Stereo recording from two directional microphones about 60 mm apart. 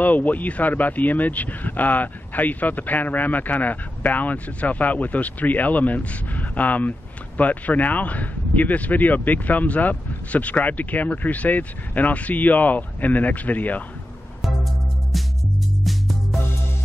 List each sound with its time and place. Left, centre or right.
0.0 s speech: left
15.1 s music: centre